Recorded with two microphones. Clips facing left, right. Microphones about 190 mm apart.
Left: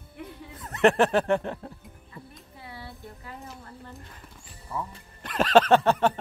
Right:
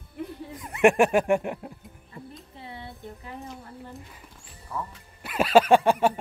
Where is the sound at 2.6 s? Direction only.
20° right (ahead or behind).